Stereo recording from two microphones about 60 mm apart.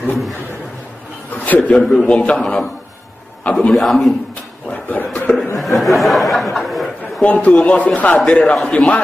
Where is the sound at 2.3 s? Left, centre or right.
Centre.